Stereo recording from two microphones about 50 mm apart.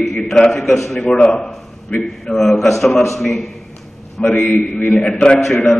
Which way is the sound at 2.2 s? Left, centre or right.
Centre.